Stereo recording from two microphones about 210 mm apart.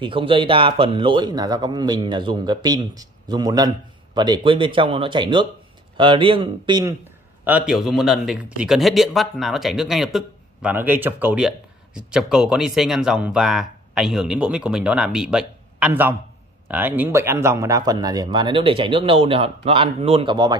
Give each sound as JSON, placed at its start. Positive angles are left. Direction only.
{"t": 0.0, "sound": "a man's voice", "side_deg": -25}
{"t": 7.4, "sound": "a man's voice", "side_deg": -5}